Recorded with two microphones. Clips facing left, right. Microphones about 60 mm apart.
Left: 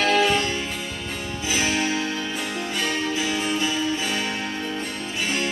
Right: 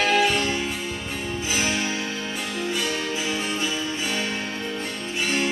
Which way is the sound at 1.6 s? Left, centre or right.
Left.